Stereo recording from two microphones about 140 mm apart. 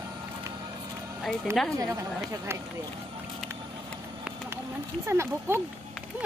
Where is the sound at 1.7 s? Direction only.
20° right (ahead or behind).